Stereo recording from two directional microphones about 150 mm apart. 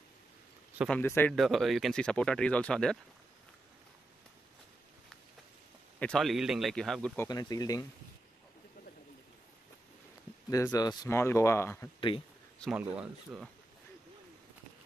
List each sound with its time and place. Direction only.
0.8 s speech: 10° left (ahead or behind)
1.3 s speech: centre (ahead or behind)
5.9 s speech: 5° left (ahead or behind)
7.2 s speech: 25° left (ahead or behind)
10.5 s speech: 25° left (ahead or behind)
12.9 s speech: 5° right (ahead or behind)